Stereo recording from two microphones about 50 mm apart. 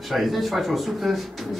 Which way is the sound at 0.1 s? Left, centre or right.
Centre.